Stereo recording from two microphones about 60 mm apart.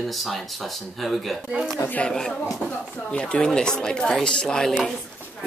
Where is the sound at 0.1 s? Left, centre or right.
Centre.